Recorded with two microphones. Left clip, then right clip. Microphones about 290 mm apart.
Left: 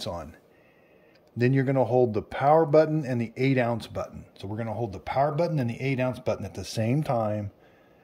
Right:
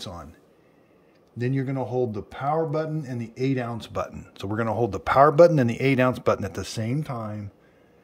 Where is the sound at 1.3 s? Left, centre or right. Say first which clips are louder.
Left 5 dB; centre.